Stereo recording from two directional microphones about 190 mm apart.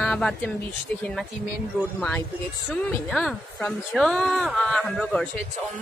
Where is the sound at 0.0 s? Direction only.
5° left (ahead or behind).